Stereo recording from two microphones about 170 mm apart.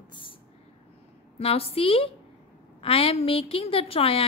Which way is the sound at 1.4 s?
35° left (ahead or behind).